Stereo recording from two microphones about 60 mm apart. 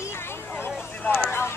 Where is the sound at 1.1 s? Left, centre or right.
Left.